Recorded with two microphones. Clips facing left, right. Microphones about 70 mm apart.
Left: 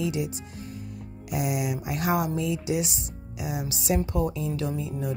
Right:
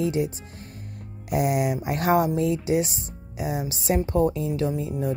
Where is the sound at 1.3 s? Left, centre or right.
Right.